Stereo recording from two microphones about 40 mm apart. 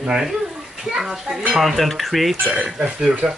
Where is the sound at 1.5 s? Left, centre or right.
Centre.